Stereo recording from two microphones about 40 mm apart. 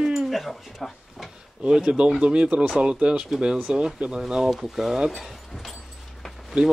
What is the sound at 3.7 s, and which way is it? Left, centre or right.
Speech, centre.